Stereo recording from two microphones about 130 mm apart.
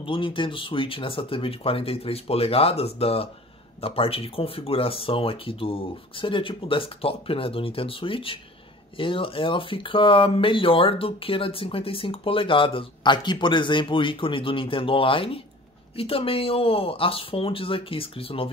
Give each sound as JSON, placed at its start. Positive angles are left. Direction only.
{"t": 0.0, "sound": "speech", "side_deg": 40}